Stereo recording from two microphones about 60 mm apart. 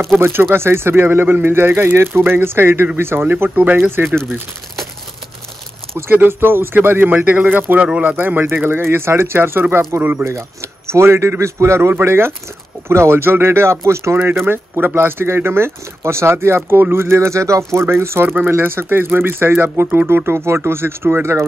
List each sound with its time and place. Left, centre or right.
0.2 s speech: right
3.9 s speech: right
4.2 s speech: centre
6.1 s speech: right
7.8 s speech: centre
8.2 s speech: right
10.3 s speech: right
17.7 s speech: right